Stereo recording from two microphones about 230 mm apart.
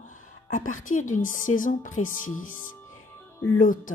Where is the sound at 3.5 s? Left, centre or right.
Left.